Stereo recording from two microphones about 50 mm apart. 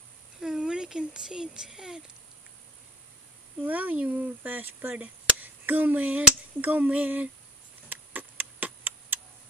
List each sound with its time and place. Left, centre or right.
0.6 s speech: centre
3.6 s speech: right
7.9 s tick: right